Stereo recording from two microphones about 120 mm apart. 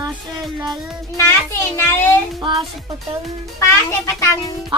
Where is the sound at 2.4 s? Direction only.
40° right (ahead or behind).